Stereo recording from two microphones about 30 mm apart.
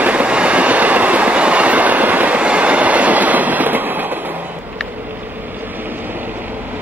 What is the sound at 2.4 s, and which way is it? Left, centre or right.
Train, right.